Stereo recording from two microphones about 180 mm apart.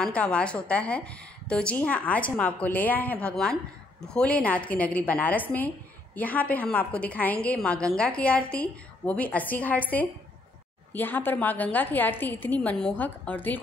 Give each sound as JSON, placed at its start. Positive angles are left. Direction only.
{"t": 0.0, "sound": "a woman's voice", "side_deg": 5}